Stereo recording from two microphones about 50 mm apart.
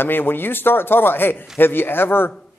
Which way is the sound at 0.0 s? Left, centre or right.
Left.